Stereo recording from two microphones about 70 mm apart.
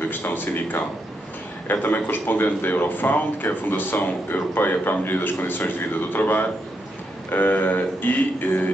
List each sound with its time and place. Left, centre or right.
0.1 s speech: left